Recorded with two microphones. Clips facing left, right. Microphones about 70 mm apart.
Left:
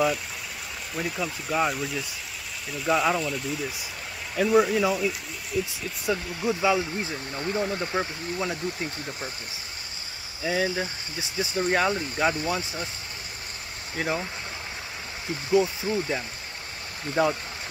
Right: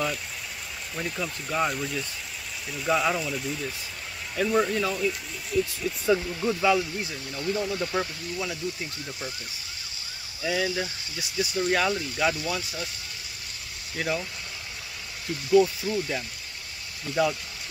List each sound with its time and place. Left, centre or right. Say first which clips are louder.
0.9 s speech: left 2 dB; centre; by 8.8 s left
10.4 s speech: left 1 dB; left
13.9 s speech: left 1 dB; left
15.5 s speech: right 2 dB; left